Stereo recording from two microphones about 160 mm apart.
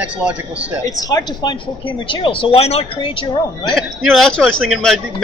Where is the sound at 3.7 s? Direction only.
Centre (ahead or behind).